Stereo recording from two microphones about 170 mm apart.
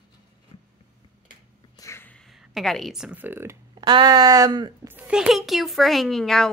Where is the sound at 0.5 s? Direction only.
35° left (ahead or behind).